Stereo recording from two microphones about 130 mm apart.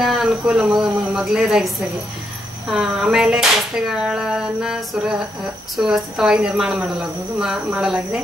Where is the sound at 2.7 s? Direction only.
5° right (ahead or behind).